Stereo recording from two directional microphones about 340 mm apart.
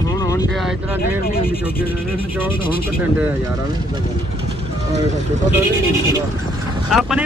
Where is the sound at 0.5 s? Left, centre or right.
Centre.